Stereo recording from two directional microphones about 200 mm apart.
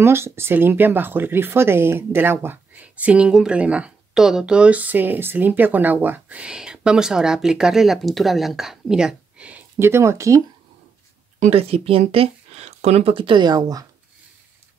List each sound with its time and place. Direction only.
0.0 s speech: 10° right (ahead or behind)
11.3 s speech: 30° right (ahead or behind)